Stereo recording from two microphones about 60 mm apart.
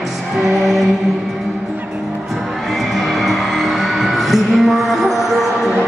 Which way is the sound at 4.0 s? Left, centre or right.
Centre.